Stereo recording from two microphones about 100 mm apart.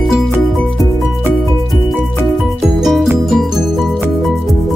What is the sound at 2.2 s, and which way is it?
Music, centre (ahead or behind).